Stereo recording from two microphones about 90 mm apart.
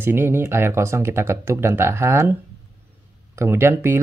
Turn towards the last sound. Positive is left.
turn(degrees=-25)  # may be behind; listen again after turning